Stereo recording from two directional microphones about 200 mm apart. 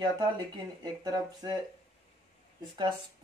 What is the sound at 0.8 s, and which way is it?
Speech, 20° right (ahead or behind).